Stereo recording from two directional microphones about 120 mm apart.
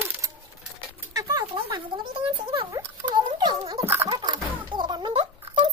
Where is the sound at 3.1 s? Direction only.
40° right (ahead or behind).